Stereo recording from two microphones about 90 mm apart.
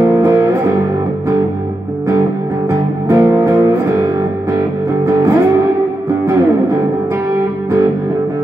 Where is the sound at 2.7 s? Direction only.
35° right (ahead or behind).